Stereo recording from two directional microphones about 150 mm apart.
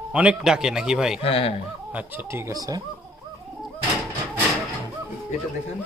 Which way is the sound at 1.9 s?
10° right (ahead or behind).